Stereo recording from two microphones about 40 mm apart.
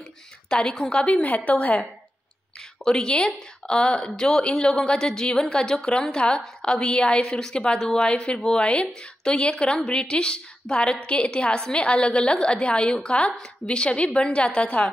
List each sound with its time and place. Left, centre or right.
0.5 s a woman's voice: left
2.8 s a woman's voice: centre
7.2 s a woman's voice: centre
8.0 s a woman's voice: left